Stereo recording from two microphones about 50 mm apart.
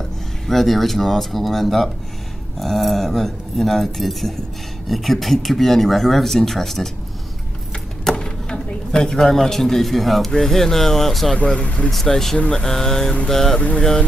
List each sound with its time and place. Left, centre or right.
0.5 s speech: centre
8.0 s a sound: centre
10.3 s speech: centre
11.3 s speech: left
11.9 s speech: centre
12.4 s speech: left
12.6 s a sound: centre
13.6 s speech: left